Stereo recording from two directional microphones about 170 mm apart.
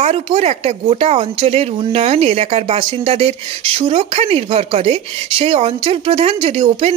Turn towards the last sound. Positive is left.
turn(degrees=-40)  # may be behind; listen again after turning